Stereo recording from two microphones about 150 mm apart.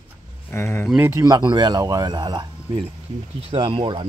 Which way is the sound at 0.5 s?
15° left (ahead or behind).